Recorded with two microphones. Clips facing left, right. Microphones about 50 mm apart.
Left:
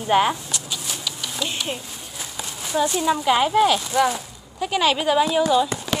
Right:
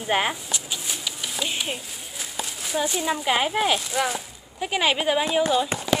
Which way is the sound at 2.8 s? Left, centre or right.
Centre.